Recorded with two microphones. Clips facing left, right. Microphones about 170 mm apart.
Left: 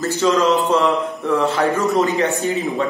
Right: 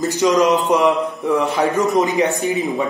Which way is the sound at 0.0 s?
15° right (ahead or behind).